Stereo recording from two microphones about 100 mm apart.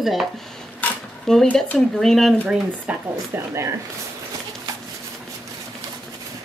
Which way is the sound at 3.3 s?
20° right (ahead or behind).